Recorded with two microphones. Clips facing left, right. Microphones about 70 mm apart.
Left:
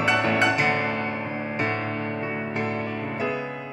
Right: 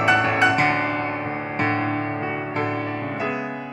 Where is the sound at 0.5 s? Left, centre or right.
Right.